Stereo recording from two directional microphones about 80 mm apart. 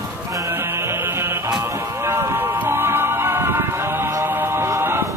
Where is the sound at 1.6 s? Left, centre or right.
Right.